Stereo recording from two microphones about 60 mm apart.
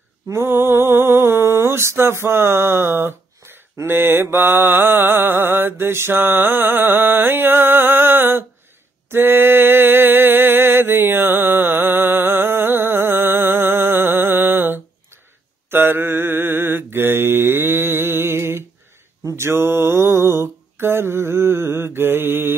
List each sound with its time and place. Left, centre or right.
0.3 s mantra: right
9.1 s a sound: right
15.7 s mantra: right